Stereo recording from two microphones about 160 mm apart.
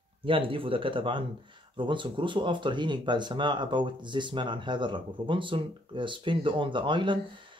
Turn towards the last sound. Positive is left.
turn(degrees=-30)  # may be behind; listen again after turning